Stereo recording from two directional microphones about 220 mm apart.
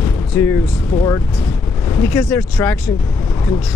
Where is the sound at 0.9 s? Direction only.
15° left (ahead or behind).